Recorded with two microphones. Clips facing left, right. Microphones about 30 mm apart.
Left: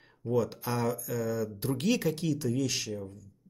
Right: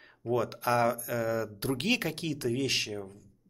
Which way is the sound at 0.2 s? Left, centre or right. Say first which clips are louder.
Even; right.